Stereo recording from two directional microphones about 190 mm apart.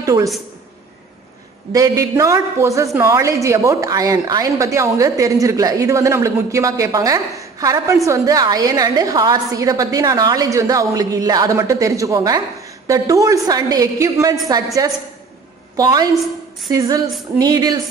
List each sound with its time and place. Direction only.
0.0 s speech: 15° right (ahead or behind)
1.7 s a woman's voice: 15° right (ahead or behind)